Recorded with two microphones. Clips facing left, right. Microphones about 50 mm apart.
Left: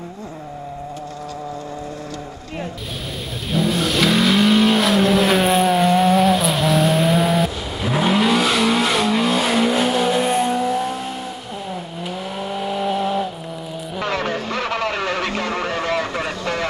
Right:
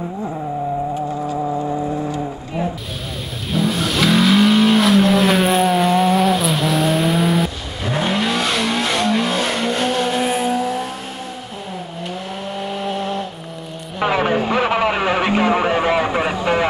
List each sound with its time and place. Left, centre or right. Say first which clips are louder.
3.5 s vehicle: even; centre
12.5 s vehicle: left 2 dB; centre
13.9 s vehicle: right 6 dB; centre